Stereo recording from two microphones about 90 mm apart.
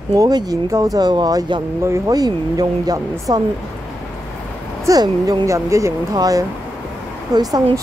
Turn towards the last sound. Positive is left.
turn(degrees=-45)  # may be behind; listen again after turning